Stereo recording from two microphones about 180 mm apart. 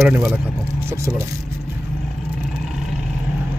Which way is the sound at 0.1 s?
5° right (ahead or behind).